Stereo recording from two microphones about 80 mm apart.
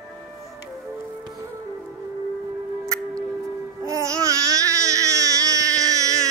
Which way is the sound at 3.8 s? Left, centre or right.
Right.